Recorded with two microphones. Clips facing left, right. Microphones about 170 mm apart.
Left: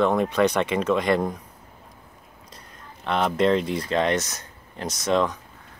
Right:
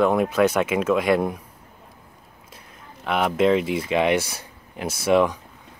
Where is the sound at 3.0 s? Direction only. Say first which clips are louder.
Right 2 dB; 5° right (ahead or behind).